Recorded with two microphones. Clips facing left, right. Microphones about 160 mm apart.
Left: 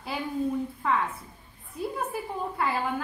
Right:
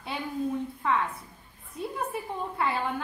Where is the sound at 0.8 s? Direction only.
5° left (ahead or behind).